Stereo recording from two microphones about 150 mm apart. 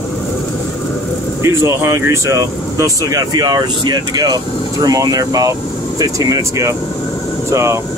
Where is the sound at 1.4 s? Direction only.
20° right (ahead or behind).